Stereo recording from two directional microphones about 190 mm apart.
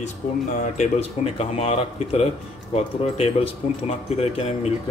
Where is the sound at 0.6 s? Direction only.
35° left (ahead or behind).